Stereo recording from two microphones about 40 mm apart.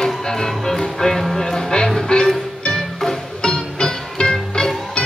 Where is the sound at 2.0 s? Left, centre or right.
Left.